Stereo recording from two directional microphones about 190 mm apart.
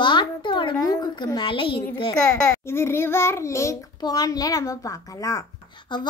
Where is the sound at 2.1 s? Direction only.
5° left (ahead or behind); by 6.0 s 20° left (ahead or behind).